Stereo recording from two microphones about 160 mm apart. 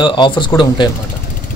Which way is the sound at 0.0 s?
30° left (ahead or behind).